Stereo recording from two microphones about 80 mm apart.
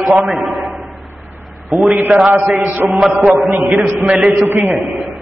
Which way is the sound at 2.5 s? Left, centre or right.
Right.